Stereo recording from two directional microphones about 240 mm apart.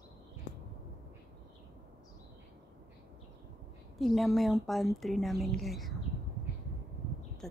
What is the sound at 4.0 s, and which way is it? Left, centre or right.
A woman's voice, centre.